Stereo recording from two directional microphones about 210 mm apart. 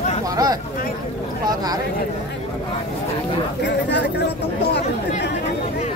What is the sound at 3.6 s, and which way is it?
Speech, 55° left (ahead or behind).